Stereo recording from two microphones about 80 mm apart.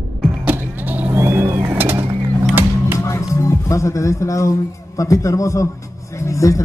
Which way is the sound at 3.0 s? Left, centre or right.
Left.